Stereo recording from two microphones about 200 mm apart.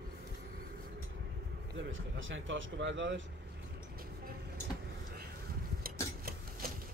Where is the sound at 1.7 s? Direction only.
70° right (ahead or behind).